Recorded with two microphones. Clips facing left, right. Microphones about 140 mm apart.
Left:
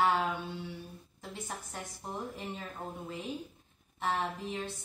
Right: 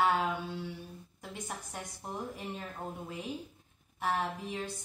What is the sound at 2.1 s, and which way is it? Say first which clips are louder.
A woman's voice: even; centre (ahead or behind).